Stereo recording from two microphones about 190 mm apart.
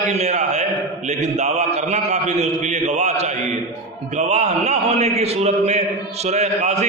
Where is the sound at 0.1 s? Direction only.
35° right (ahead or behind).